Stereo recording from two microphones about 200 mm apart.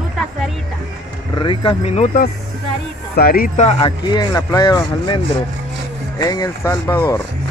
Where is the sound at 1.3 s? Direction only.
25° left (ahead or behind).